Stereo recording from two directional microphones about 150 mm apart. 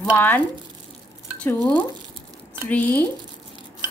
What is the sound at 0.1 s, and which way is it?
Speech, 15° left (ahead or behind).